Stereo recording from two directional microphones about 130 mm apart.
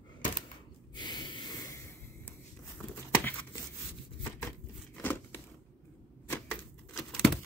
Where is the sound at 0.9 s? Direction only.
35° left (ahead or behind).